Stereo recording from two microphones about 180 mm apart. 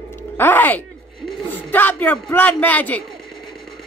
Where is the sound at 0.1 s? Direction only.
10° left (ahead or behind).